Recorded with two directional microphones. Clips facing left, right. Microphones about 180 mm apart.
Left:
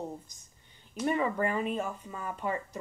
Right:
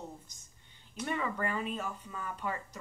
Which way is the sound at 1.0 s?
30° left (ahead or behind).